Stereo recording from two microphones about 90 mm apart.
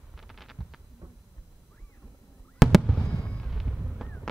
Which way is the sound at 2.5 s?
Centre (ahead or behind).